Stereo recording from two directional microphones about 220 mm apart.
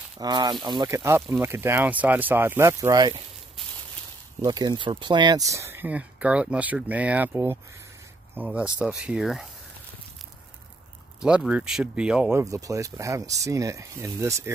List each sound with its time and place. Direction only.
0.2 s speech: 20° right (ahead or behind)
4.4 s speech: 20° right (ahead or behind); by 9.5 s centre (ahead or behind)
11.1 s speech: 5° right (ahead or behind)